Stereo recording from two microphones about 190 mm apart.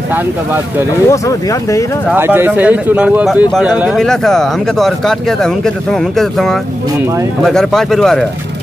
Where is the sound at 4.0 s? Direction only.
5° left (ahead or behind).